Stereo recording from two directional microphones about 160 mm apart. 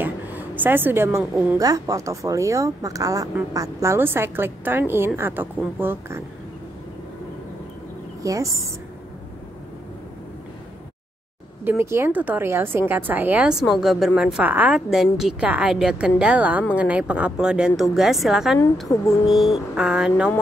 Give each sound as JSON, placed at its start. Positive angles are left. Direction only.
{"t": 0.0, "sound": "a sound", "side_deg": -10}
{"t": 1.6, "sound": "a woman's voice", "side_deg": -20}
{"t": 8.2, "sound": "speech", "side_deg": -20}
{"t": 11.6, "sound": "a woman's voice", "side_deg": -15}
{"t": 18.9, "sound": "speech", "side_deg": 20}
{"t": 19.3, "sound": "speech", "side_deg": 0}